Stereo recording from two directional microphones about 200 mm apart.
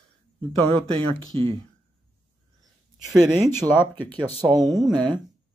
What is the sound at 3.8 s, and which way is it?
Speech, 10° left (ahead or behind).